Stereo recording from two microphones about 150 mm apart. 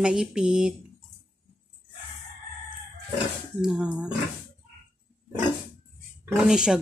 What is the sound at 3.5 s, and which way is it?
Speech, 5° right (ahead or behind).